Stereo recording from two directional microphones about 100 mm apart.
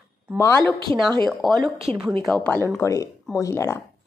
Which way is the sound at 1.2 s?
Centre (ahead or behind).